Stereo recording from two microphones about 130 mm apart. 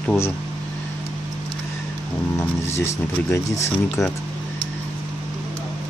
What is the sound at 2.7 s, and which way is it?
Speech, 20° left (ahead or behind).